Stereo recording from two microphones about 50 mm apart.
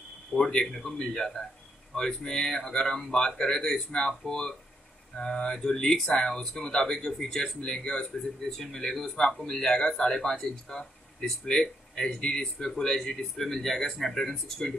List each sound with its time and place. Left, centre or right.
0.4 s speech: centre
11.9 s speech: centre